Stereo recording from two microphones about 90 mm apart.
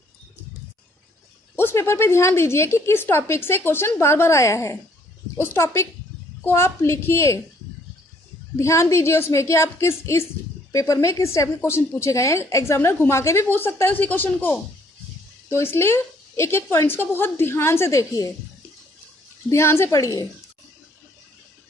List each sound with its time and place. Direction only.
1.6 s a woman's voice: 30° left (ahead or behind)
8.5 s a woman's voice: 35° left (ahead or behind)
19.5 s a woman's voice: 30° left (ahead or behind)